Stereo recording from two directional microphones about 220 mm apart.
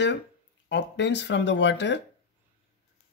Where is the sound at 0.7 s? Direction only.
55° left (ahead or behind).